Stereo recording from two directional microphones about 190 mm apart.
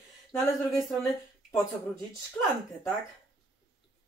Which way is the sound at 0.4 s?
Centre (ahead or behind).